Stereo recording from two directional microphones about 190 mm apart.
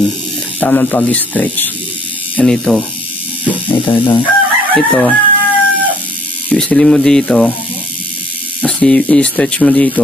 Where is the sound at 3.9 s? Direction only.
25° left (ahead or behind).